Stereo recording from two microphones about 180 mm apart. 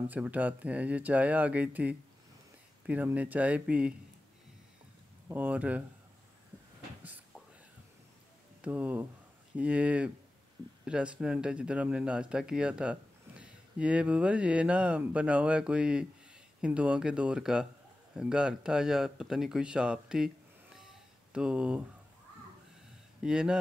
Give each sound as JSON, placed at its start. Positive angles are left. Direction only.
{"t": 0.1, "sound": "speech", "side_deg": -10}
{"t": 5.3, "sound": "speech", "side_deg": -10}
{"t": 7.0, "sound": "a sound", "side_deg": -10}
{"t": 8.5, "sound": "speech", "side_deg": -5}
{"t": 20.7, "sound": "cat", "side_deg": -5}
{"t": 23.2, "sound": "speech", "side_deg": -5}